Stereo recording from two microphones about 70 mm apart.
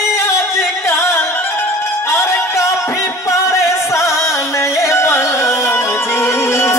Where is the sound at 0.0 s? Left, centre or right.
Left.